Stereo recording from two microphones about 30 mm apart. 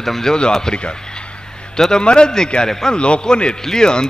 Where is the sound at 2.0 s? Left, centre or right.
Left.